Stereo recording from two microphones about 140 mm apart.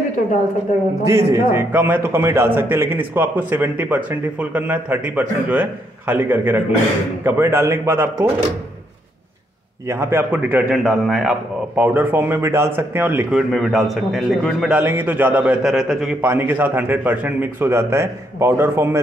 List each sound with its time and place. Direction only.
0.7 s a man's voice: 60° left (ahead or behind)
1.0 s a man's voice: 20° right (ahead or behind)
9.8 s a man's voice: 15° right (ahead or behind); by 11.8 s centre (ahead or behind)
11.8 s a man's voice: 15° right (ahead or behind)
13.3 s speech: centre (ahead or behind)
14.8 s a man's voice: 15° right (ahead or behind)
15.7 s speech: centre (ahead or behind)
16.2 s a man's voice: 15° right (ahead or behind)